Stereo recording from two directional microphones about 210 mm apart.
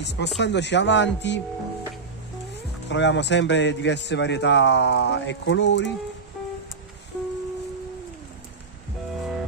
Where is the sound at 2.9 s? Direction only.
60° left (ahead or behind).